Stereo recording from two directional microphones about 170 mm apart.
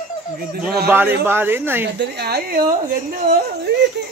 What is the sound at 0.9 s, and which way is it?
Speech, 10° right (ahead or behind).